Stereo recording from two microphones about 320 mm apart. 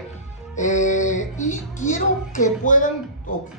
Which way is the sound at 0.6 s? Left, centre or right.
Left.